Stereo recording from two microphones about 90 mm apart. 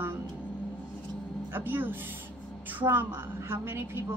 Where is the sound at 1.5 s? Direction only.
20° right (ahead or behind).